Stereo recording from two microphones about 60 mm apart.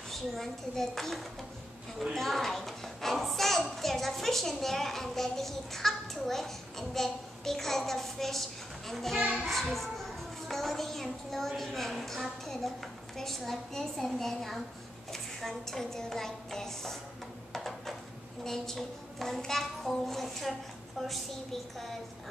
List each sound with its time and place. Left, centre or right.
0.1 s a woman's voice: centre
9.2 s a child's voice: right
9.5 s a child's voice: centre
17.5 s a sound: centre
18.4 s a woman's voice: centre